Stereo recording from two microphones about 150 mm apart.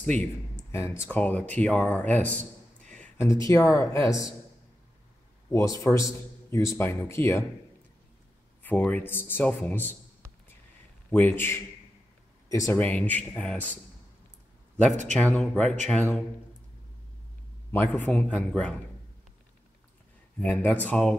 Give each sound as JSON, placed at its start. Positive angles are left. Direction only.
{"t": 0.7, "sound": "speech", "side_deg": 15}
{"t": 2.9, "sound": "a sound", "side_deg": 10}
{"t": 3.4, "sound": "speech", "side_deg": 20}
{"t": 5.5, "sound": "speech", "side_deg": 20}
{"t": 8.6, "sound": "a man's voice", "side_deg": 10}
{"t": 15.3, "sound": "speech", "side_deg": 5}
{"t": 17.6, "sound": "speech", "side_deg": 10}
{"t": 20.3, "sound": "speech", "side_deg": 10}